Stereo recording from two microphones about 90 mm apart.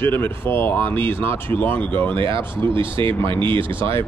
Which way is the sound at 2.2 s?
65° right (ahead or behind).